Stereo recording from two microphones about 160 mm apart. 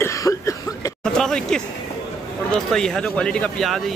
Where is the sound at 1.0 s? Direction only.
5° left (ahead or behind).